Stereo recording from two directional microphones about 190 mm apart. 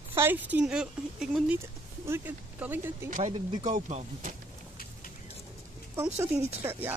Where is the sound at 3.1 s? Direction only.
40° right (ahead or behind).